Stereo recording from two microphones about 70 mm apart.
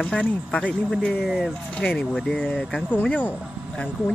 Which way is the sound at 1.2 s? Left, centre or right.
Centre.